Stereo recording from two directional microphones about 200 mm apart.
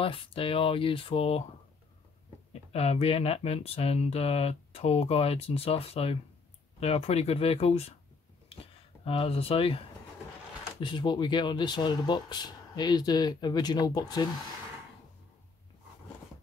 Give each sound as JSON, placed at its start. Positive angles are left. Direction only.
{"t": 0.0, "sound": "speech", "side_deg": 25}
{"t": 2.5, "sound": "speech", "side_deg": 30}
{"t": 9.0, "sound": "speech", "side_deg": 30}
{"t": 10.8, "sound": "speech", "side_deg": 25}